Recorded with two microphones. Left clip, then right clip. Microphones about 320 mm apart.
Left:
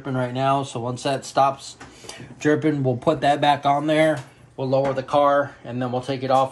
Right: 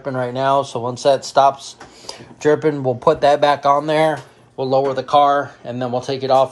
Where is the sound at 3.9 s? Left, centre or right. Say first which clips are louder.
Right 3 dB; centre.